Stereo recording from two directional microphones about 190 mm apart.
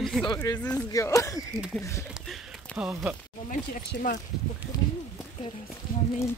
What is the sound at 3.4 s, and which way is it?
Speech, 45° left (ahead or behind).